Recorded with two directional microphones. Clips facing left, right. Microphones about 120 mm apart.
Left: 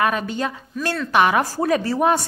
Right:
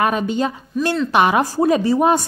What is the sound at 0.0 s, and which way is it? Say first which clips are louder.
A woman's voice: right 3 dB; 25° right (ahead or behind).